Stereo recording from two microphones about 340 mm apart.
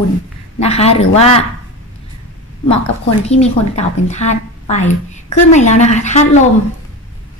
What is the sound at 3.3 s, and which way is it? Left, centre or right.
A woman's voice, centre.